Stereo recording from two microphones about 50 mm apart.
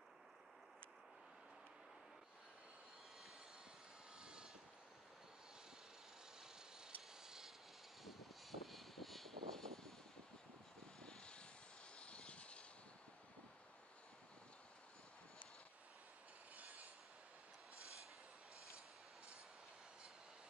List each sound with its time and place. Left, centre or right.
4.2 s vehicle: centre
6.4 s a sound: centre
8.0 s vehicle: centre
11.0 s vehicle: centre
16.5 s train: right